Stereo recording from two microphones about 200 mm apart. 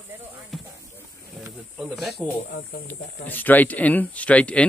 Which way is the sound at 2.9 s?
10° left (ahead or behind).